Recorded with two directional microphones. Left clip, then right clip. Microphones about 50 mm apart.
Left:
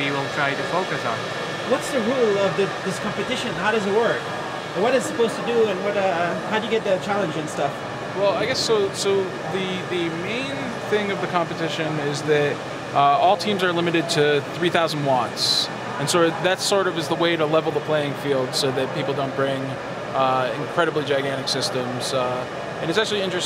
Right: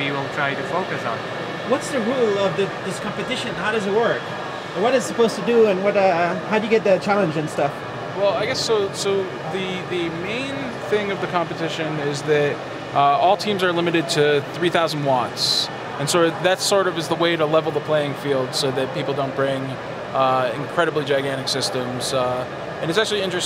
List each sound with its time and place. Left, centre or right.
0.1 s speech: centre
1.7 s speech: left
3.3 s speech: centre
5.5 s speech: centre
8.2 s speech: centre
10.9 s speech: centre